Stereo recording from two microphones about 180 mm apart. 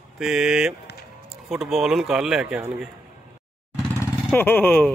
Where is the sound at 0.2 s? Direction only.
5° right (ahead or behind).